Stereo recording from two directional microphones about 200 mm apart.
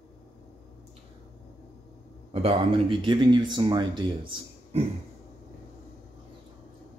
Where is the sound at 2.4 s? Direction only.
25° right (ahead or behind).